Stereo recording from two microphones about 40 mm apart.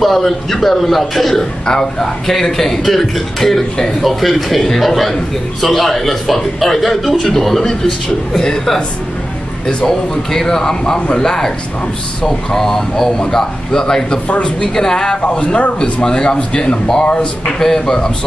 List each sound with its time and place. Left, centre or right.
0.0 s a man's voice: centre
1.7 s a man's voice: centre
4.0 s a man's voice: centre
9.8 s a man's voice: centre
12.5 s a man's voice: centre
14.2 s speech: left
14.7 s a man's voice: centre
15.4 s speech: left
17.6 s a man's voice: centre